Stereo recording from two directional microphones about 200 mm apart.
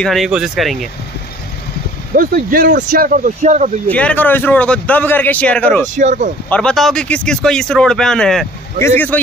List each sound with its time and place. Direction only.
0.0 s a man's voice: centre (ahead or behind)
2.1 s speech: 45° right (ahead or behind)
3.9 s a man's voice: 5° left (ahead or behind)
5.9 s speech: 40° right (ahead or behind)
6.5 s a man's voice: 5° left (ahead or behind)